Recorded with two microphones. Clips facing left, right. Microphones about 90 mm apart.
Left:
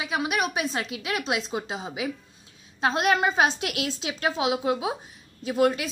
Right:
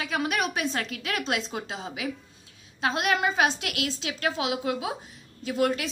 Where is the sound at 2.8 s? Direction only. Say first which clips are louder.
Left 3 dB; 30° left (ahead or behind).